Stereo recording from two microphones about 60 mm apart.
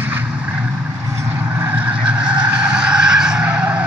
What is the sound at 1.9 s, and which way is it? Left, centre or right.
Vehicle, centre.